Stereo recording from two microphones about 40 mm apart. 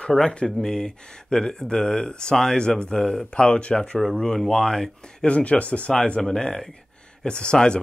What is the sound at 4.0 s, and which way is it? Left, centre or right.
Speech, centre.